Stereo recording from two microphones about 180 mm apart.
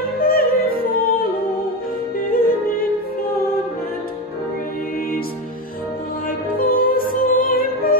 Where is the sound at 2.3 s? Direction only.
55° left (ahead or behind).